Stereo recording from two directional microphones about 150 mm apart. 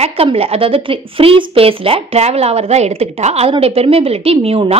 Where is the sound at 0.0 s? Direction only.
40° right (ahead or behind).